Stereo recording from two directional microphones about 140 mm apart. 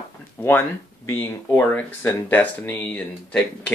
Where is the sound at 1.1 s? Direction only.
15° left (ahead or behind).